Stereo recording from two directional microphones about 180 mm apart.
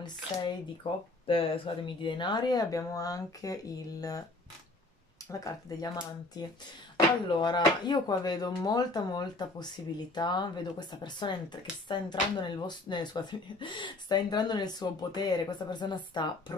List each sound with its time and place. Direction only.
0.0 s speech: 25° left (ahead or behind)
5.3 s speech: 20° left (ahead or behind)